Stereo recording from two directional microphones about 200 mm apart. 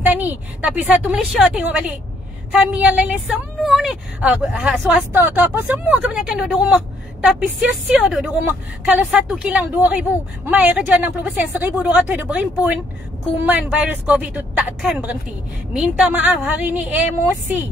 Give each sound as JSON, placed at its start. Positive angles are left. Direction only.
{"t": 0.0, "sound": "a woman's voice", "side_deg": -10}